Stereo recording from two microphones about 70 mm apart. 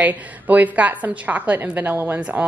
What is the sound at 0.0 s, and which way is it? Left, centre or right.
A woman's voice, right.